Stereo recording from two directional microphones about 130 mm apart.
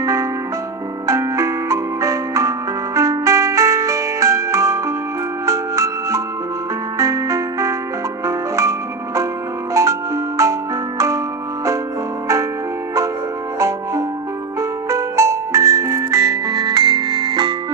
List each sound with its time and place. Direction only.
0.0 s music: 25° right (ahead or behind)
13.6 s music: 25° right (ahead or behind)
16.5 s music: 30° right (ahead or behind)